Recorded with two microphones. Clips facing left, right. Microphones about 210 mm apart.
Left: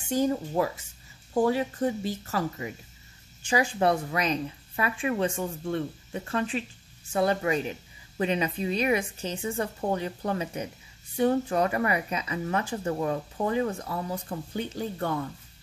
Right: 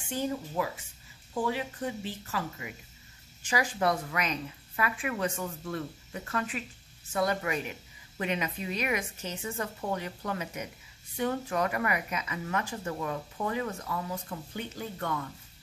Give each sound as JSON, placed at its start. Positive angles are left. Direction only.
{"t": 0.1, "sound": "speech", "side_deg": 40}
{"t": 3.4, "sound": "speech", "side_deg": 30}